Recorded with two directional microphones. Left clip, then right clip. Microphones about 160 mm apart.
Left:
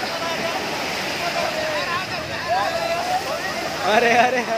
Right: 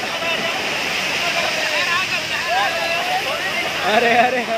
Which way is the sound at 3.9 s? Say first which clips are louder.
Right 1 dB; 30° right (ahead or behind).